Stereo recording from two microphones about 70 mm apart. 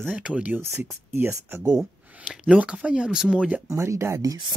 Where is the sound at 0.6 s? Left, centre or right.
Right; by 3.5 s centre.